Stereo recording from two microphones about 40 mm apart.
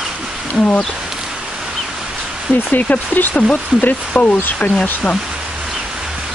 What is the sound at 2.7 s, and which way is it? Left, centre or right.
Speech, left.